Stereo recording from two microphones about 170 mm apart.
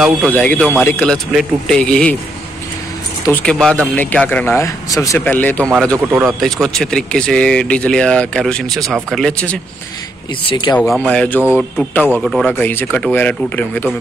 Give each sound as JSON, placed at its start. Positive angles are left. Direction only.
{"t": 0.3, "sound": "a man's voice", "side_deg": 10}
{"t": 3.3, "sound": "a man's voice", "side_deg": 10}
{"t": 10.4, "sound": "speech", "side_deg": 30}
{"t": 10.8, "sound": "a man's voice", "side_deg": 5}
{"t": 11.4, "sound": "speech", "side_deg": -10}
{"t": 11.9, "sound": "a man's voice", "side_deg": 10}
{"t": 12.2, "sound": "a man's voice", "side_deg": 0}